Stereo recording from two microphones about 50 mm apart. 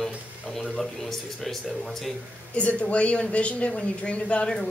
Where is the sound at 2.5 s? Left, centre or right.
Left.